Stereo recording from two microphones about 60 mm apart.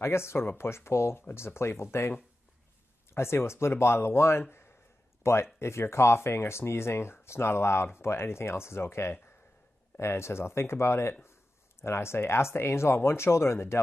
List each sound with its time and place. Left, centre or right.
0.0 s speech: left